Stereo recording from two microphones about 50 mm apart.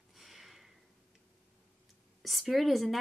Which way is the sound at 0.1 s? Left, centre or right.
Centre.